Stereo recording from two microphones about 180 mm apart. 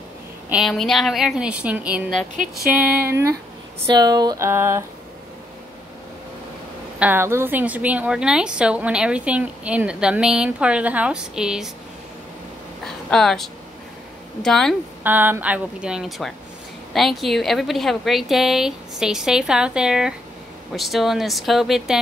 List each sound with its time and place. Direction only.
0.5 s a woman's voice: centre (ahead or behind)
3.9 s a sound: 20° right (ahead or behind)
7.0 s a woman's voice: 10° right (ahead or behind)
12.8 s a sound: centre (ahead or behind)
14.4 s a woman's voice: 5° left (ahead or behind)
15.0 s a woman's voice: 10° right (ahead or behind)